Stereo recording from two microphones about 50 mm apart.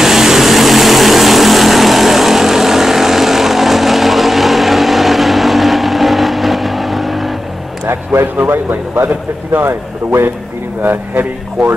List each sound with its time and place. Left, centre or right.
0.0 s vehicle: centre
7.8 s a man's voice: right